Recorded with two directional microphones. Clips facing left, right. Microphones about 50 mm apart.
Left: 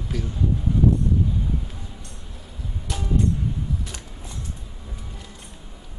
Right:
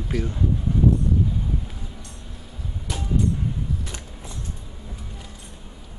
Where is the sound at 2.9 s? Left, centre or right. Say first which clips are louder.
Even; centre.